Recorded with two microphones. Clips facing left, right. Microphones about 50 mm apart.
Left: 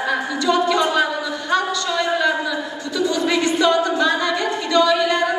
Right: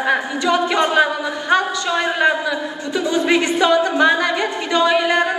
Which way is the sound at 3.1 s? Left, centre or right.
Right.